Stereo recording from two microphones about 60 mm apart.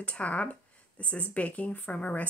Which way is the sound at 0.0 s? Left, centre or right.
Left.